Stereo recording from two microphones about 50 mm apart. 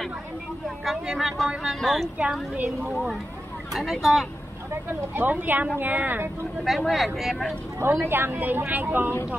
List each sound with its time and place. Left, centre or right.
0.8 s speech: centre
3.7 s speech: centre
5.1 s a woman's voice: right
6.6 s speech: centre
7.8 s a woman's voice: right